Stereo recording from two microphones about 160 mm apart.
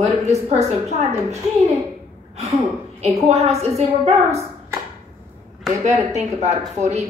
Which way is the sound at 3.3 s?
40° right (ahead or behind).